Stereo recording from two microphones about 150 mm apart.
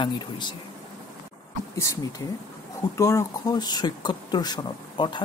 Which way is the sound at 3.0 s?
20° left (ahead or behind).